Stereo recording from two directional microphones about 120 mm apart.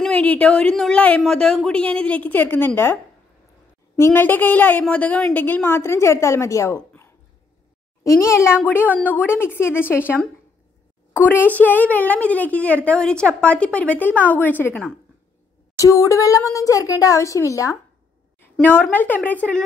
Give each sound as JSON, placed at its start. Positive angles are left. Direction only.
{"t": 0.1, "sound": "a woman's voice", "side_deg": 10}
{"t": 4.0, "sound": "a woman's voice", "side_deg": 15}
{"t": 8.0, "sound": "a woman's voice", "side_deg": 25}
{"t": 15.8, "sound": "speech", "side_deg": 25}
{"t": 18.6, "sound": "a woman's voice", "side_deg": 15}